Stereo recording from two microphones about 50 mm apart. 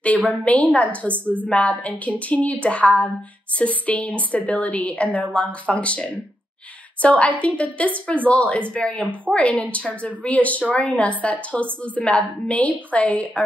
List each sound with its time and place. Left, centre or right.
0.3 s a woman's voice: left
1.0 s a woman's voice: right
1.5 s a woman's voice: left